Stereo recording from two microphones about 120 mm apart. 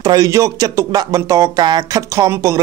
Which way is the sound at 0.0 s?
30° right (ahead or behind).